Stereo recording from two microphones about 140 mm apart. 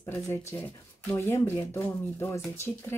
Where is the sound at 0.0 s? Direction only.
15° left (ahead or behind).